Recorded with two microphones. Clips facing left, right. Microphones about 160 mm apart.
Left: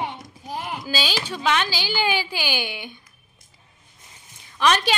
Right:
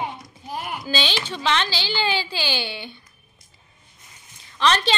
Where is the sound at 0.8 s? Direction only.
5° left (ahead or behind).